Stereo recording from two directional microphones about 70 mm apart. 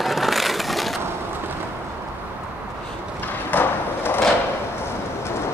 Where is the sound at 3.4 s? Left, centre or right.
Left.